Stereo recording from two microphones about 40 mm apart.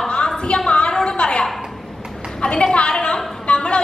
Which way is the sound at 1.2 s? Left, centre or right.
Left.